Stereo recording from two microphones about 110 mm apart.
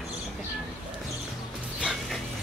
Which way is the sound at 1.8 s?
Centre (ahead or behind).